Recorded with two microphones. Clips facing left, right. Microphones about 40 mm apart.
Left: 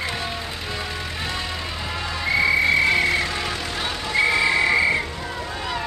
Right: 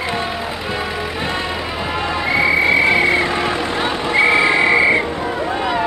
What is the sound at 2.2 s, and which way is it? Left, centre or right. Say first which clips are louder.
Vehicle: right 3 dB; centre.